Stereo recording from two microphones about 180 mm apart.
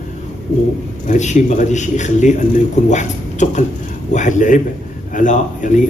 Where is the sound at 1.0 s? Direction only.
40° left (ahead or behind).